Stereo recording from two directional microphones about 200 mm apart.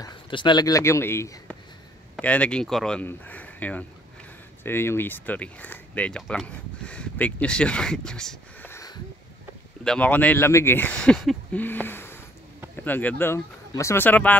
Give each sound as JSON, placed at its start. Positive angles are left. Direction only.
{"t": 0.0, "sound": "speech", "side_deg": 25}